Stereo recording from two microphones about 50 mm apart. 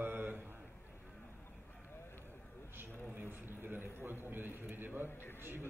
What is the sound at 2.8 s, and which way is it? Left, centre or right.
A man's voice, right.